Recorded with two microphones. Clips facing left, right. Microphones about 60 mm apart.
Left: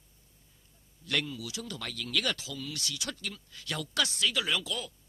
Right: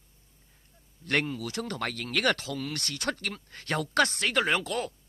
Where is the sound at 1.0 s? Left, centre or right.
Right.